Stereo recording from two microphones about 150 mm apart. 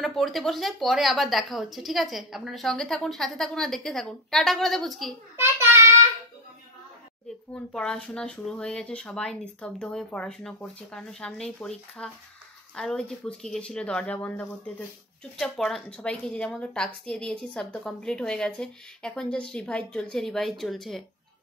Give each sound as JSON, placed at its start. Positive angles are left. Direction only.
{"t": 0.0, "sound": "a woman's voice", "side_deg": 0}
{"t": 5.4, "sound": "a child's voice", "side_deg": -15}
{"t": 7.5, "sound": "a woman's voice", "side_deg": 5}